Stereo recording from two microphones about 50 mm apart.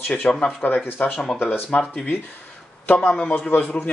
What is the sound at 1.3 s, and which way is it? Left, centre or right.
Speech, centre.